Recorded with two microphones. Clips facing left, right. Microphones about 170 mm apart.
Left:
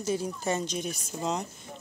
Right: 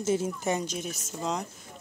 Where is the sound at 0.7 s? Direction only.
5° right (ahead or behind).